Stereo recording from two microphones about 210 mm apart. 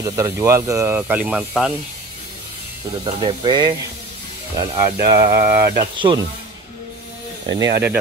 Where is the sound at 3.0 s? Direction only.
20° right (ahead or behind).